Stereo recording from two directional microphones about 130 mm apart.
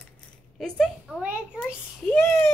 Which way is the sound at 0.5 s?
5° left (ahead or behind).